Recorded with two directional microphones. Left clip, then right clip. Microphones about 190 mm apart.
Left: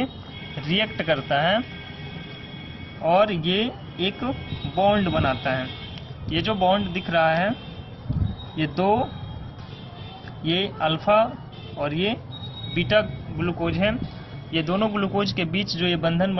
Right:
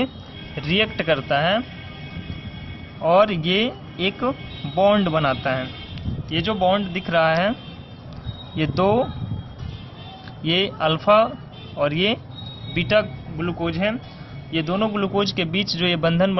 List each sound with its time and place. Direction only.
0.6 s a man's voice: 30° right (ahead or behind)
3.0 s a man's voice: 30° right (ahead or behind)
8.5 s speech: 35° right (ahead or behind)
10.4 s speech: 35° right (ahead or behind)
12.7 s a man's voice: 25° right (ahead or behind)
13.6 s a man's voice: 5° right (ahead or behind); by 16.3 s 35° right (ahead or behind)